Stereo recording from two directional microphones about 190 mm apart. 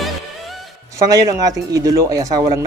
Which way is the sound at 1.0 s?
20° right (ahead or behind).